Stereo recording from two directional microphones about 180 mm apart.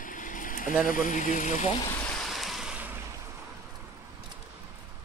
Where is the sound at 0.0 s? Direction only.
45° left (ahead or behind).